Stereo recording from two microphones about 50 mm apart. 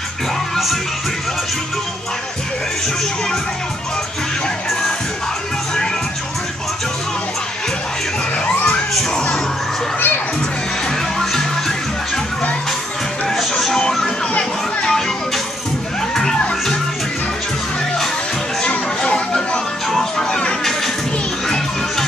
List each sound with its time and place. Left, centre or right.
8.6 s children shouting: centre
9.9 s children playing: left
11.1 s music: centre
13.3 s music: centre
18.6 s chatter: left
19.9 s music: centre